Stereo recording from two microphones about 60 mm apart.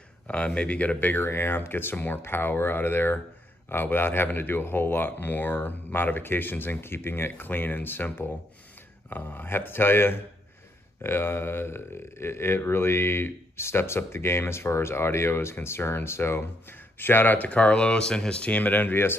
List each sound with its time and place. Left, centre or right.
0.3 s speech: centre
1.2 s speech: left